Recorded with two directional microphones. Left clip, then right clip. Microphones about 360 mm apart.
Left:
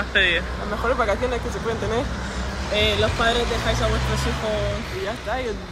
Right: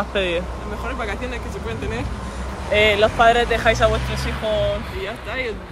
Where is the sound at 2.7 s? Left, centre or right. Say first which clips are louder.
Right 6 dB; centre.